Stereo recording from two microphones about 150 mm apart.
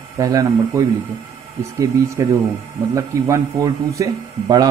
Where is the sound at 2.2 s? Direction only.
20° right (ahead or behind).